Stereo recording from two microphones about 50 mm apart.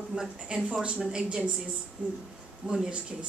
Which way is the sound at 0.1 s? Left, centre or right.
Centre.